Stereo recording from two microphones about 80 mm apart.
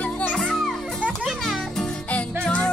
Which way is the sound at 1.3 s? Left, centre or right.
Centre.